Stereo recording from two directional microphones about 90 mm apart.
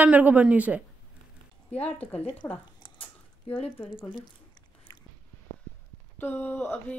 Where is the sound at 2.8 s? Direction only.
70° left (ahead or behind).